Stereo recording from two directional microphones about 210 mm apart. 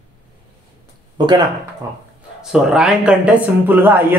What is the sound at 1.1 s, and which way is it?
Speech, 20° right (ahead or behind).